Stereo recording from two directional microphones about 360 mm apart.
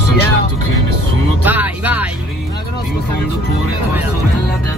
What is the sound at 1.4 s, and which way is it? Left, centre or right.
Music, centre.